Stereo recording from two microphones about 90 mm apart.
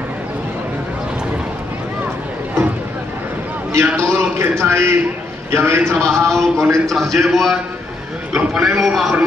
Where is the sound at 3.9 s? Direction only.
30° right (ahead or behind).